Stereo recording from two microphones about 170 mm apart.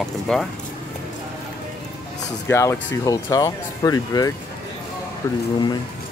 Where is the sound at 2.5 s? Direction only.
15° left (ahead or behind).